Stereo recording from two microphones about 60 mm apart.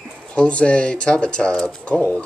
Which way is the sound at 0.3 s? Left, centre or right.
Centre.